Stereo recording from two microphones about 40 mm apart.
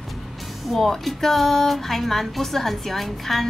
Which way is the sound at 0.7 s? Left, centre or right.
Centre.